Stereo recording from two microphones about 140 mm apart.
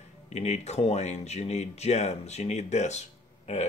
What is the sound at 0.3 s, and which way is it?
Speech, 50° left (ahead or behind).